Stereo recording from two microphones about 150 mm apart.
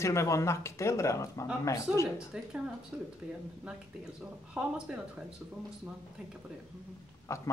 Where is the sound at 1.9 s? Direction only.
5° right (ahead or behind).